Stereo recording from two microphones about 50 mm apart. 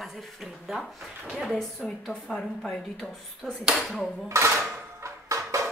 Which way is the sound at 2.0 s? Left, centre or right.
Centre.